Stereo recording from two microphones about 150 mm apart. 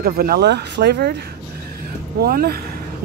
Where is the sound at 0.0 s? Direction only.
85° right.